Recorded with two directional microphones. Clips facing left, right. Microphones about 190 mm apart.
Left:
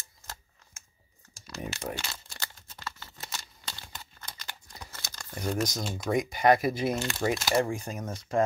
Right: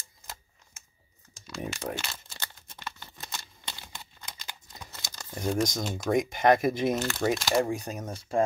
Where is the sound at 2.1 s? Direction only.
20° right (ahead or behind).